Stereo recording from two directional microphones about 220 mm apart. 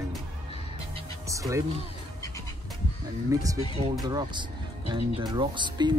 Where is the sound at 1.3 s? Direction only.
15° right (ahead or behind).